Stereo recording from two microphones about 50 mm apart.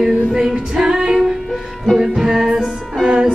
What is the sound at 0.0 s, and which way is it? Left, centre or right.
Music, centre.